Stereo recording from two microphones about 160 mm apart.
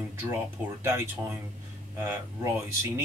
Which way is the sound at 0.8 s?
15° right (ahead or behind).